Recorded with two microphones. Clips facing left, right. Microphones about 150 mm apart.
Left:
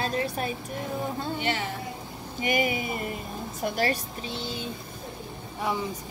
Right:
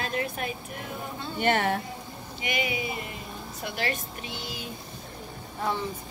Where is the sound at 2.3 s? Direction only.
45° left (ahead or behind).